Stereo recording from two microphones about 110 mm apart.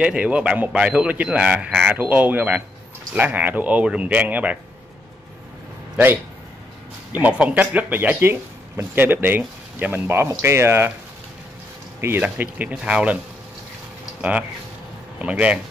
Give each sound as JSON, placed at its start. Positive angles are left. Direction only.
{"t": 0.0, "sound": "speech", "side_deg": -10}
{"t": 7.1, "sound": "speech", "side_deg": -15}
{"t": 12.2, "sound": "speech", "side_deg": -15}
{"t": 15.1, "sound": "speech", "side_deg": -10}